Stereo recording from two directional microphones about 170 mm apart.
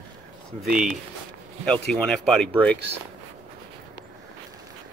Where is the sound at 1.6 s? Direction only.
5° left (ahead or behind).